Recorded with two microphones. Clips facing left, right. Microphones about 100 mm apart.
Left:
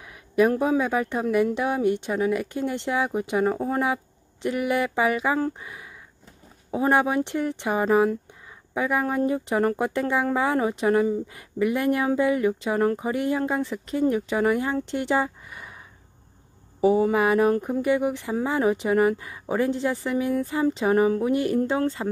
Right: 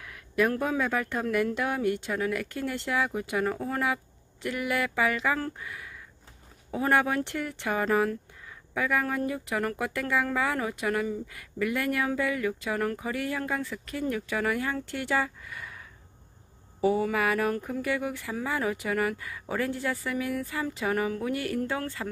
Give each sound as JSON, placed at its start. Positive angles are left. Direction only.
{"t": 0.0, "sound": "speech", "side_deg": 20}
{"t": 16.8, "sound": "speech", "side_deg": 25}